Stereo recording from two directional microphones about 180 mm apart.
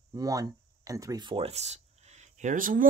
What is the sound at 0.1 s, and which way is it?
Speech, 20° right (ahead or behind).